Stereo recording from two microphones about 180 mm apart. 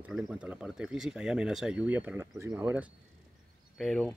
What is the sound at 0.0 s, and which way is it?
Speech, 5° right (ahead or behind).